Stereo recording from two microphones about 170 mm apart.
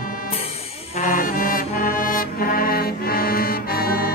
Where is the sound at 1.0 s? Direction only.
55° left (ahead or behind).